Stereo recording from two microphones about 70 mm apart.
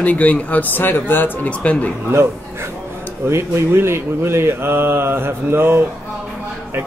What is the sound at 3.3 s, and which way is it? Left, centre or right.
Speech, right.